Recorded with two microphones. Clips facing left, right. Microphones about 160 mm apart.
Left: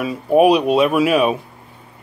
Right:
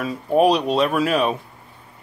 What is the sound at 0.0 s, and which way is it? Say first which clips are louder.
Speech: left 4 dB; 10° left (ahead or behind).